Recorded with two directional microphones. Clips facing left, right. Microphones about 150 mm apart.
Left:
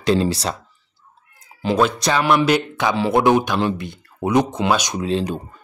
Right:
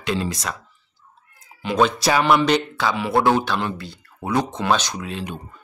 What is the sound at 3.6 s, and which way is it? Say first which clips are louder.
Speech: left 6 dB; 25° left (ahead or behind).